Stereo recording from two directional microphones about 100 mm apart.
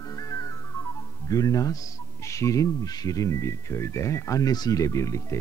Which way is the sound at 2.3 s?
35° left (ahead or behind).